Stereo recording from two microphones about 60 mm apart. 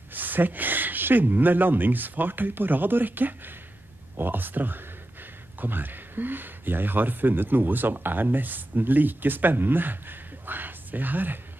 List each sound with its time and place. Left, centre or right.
0.1 s speech: right